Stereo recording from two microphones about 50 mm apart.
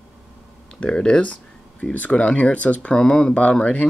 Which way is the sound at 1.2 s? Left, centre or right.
Left.